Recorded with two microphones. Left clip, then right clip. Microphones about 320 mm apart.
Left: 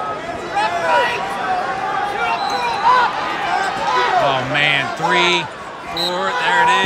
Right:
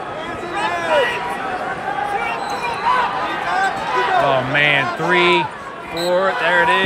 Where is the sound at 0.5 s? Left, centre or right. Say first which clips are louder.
Left 1 dB; left.